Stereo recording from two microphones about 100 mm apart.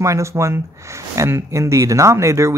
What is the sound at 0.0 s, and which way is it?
Speech, 30° right (ahead or behind).